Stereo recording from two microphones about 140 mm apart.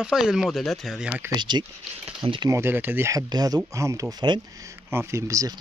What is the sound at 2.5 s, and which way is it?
Speech, 15° right (ahead or behind).